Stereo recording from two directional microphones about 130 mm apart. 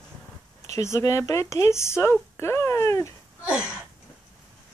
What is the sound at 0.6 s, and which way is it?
Speech, 25° left (ahead or behind).